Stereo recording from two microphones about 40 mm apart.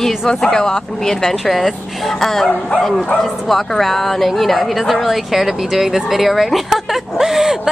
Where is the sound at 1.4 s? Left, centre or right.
Centre.